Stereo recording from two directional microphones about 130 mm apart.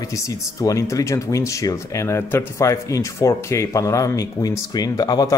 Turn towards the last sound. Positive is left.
turn(degrees=30)  # may be behind; listen again after turning